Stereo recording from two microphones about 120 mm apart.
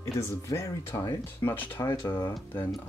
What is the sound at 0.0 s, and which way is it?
Speech, 25° left (ahead or behind).